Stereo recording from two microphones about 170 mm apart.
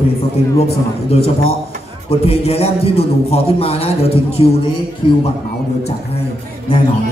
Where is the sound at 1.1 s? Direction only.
35° left (ahead or behind).